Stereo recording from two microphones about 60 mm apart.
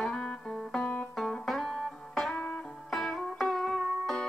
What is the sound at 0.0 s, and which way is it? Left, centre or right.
Music, centre.